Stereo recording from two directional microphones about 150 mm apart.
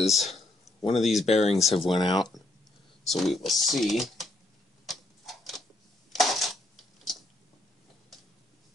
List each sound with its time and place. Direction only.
0.0 s speech: centre (ahead or behind)
1.2 s speech: 45° left (ahead or behind)
1.9 s speech: 30° left (ahead or behind)
3.1 s speech: centre (ahead or behind)
4.8 s tick-tock: centre (ahead or behind)
6.1 s coin: centre (ahead or behind)